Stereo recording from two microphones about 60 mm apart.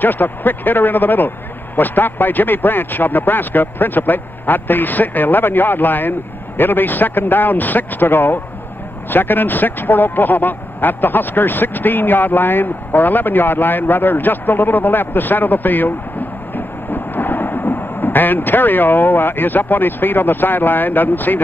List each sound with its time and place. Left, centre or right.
0.0 s speech: left